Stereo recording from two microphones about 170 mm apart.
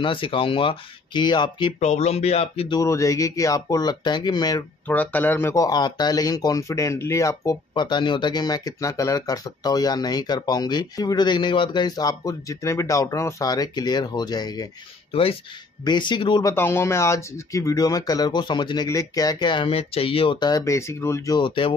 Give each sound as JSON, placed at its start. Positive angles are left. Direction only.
{"t": 0.0, "sound": "speech", "side_deg": 30}
{"t": 1.8, "sound": "speech", "side_deg": 40}
{"t": 2.8, "sound": "speech", "side_deg": 20}
{"t": 4.8, "sound": "speech", "side_deg": 10}
{"t": 15.8, "sound": "speech", "side_deg": 25}
{"t": 16.5, "sound": "speech", "side_deg": 15}
{"t": 21.4, "sound": "speech", "side_deg": 30}